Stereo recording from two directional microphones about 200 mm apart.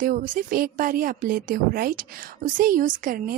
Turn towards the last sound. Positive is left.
turn(degrees=-45)  # may be behind; listen again after turning